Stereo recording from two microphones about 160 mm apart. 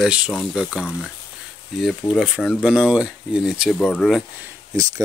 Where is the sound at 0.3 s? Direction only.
Centre (ahead or behind).